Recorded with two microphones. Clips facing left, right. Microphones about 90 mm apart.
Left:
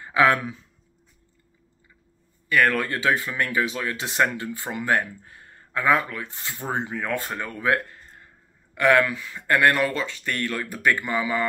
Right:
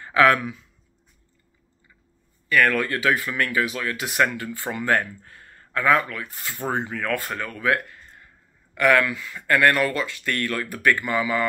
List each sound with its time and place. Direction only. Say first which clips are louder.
0.0 s speech: right 2 dB; 20° left (ahead or behind)
2.5 s speech: right 1 dB; 20° left (ahead or behind)